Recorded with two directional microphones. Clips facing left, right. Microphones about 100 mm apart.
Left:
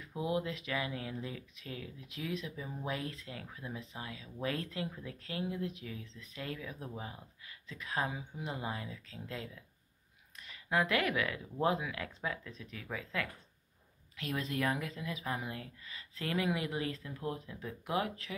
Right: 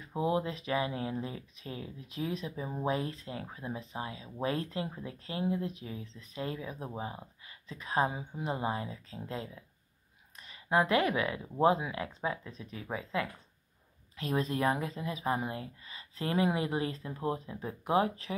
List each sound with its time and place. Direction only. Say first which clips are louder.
0.0 s speech: right 4 dB; 35° right (ahead or behind)